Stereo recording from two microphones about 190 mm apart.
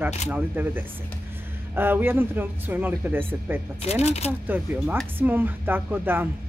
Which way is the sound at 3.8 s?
35° left (ahead or behind).